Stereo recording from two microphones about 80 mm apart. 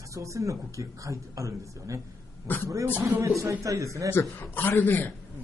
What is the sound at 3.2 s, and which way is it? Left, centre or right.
Speech, right.